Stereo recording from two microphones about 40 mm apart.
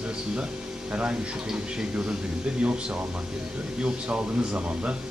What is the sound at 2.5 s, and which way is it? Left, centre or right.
Speech, right.